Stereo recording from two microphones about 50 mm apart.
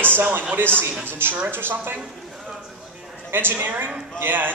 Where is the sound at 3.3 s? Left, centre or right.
Right.